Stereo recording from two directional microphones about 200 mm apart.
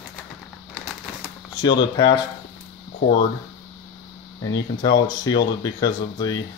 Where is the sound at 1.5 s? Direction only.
20° left (ahead or behind).